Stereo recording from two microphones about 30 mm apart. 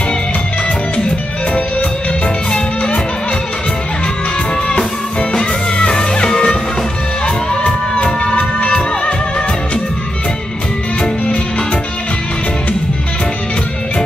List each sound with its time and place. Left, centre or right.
2.2 s music: left
4.6 s music: left